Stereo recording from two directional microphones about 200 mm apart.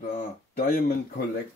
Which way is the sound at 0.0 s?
45° left (ahead or behind).